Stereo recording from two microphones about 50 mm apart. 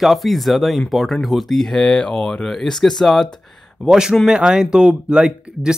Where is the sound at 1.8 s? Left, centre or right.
Centre.